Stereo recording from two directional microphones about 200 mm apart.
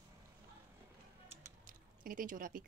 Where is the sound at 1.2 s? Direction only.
45° right (ahead or behind).